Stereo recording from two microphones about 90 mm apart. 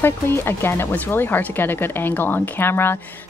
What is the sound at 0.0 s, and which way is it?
Speech, 25° left (ahead or behind).